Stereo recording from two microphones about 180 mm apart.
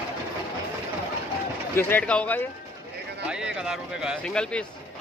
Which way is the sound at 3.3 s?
5° right (ahead or behind).